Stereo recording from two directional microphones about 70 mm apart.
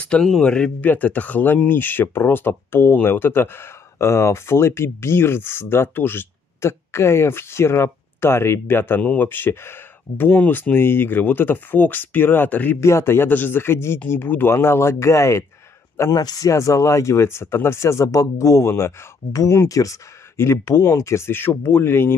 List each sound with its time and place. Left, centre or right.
0.2 s speech: centre
0.7 s speech: left
12.8 s speech: left
16.2 s speech: left
20.6 s speech: left